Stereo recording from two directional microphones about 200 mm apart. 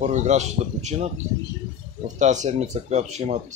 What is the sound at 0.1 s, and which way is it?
Speech, 35° right (ahead or behind).